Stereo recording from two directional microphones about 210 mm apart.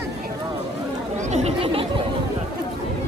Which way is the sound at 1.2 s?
30° right (ahead or behind).